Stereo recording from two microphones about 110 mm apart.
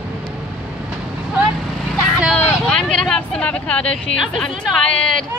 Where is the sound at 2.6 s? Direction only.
5° left (ahead or behind).